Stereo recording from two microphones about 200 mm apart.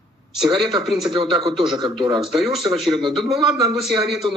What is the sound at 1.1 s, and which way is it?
Speech, 25° right (ahead or behind).